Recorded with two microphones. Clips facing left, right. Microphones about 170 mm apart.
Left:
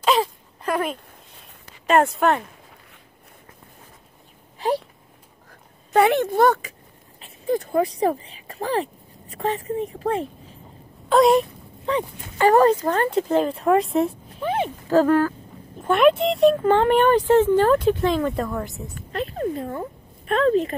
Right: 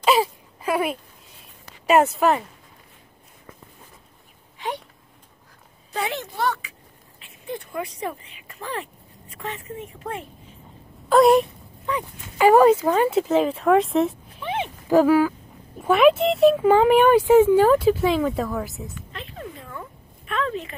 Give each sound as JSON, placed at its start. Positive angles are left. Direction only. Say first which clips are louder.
{"t": 0.0, "sound": "a sound", "louder": "right 1 dB", "side_deg": -5}
{"t": 1.9, "sound": "speech", "louder": "right 1 dB", "side_deg": -5}
{"t": 4.6, "sound": "speech", "louder": "left 7 dB", "side_deg": 35}
{"t": 5.9, "sound": "speech", "louder": "left 11 dB", "side_deg": 60}
{"t": 11.1, "sound": "speech", "louder": "right 1 dB", "side_deg": 0}
{"t": 11.8, "sound": "speech", "louder": "left 4 dB", "side_deg": 30}
{"t": 12.4, "sound": "speech", "louder": "right 2 dB", "side_deg": -10}
{"t": 14.4, "sound": "a sound", "louder": "left 4 dB", "side_deg": 40}
{"t": 14.9, "sound": "speech", "louder": "right 1 dB", "side_deg": -10}
{"t": 18.9, "sound": "a sound", "louder": "left 10 dB", "side_deg": 40}